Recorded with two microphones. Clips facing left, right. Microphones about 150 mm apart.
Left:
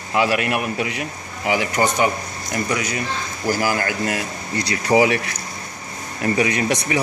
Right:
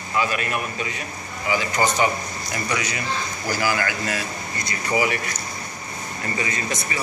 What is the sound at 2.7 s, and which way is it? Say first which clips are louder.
Speech: even; 50° left (ahead or behind).